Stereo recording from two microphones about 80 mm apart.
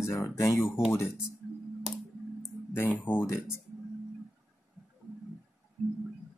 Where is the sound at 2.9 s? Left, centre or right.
Left.